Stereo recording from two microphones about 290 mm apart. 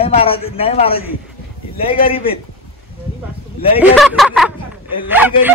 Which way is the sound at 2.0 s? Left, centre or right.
Centre.